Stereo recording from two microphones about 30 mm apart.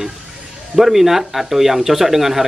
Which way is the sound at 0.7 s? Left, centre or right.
Centre.